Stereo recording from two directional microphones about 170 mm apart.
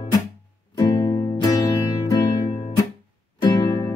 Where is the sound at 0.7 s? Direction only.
25° left (ahead or behind).